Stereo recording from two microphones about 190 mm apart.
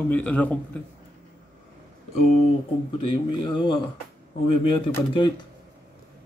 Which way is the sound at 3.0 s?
25° left (ahead or behind).